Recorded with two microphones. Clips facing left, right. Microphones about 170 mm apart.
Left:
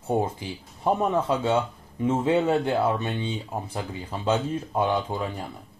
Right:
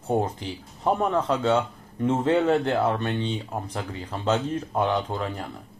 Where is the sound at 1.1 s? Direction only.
10° left (ahead or behind).